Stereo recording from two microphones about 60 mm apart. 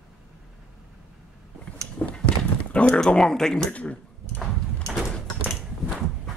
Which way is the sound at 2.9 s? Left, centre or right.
Centre.